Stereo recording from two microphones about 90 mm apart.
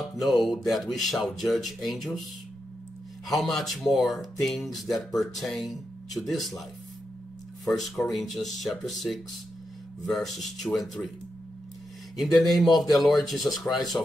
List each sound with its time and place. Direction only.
0.0 s speech: centre (ahead or behind)
3.3 s speech: centre (ahead or behind)
7.6 s speech: centre (ahead or behind)
12.4 s speech: centre (ahead or behind)
13.9 s speech: 25° left (ahead or behind)